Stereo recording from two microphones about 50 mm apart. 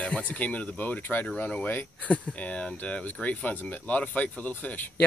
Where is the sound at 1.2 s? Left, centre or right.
Left.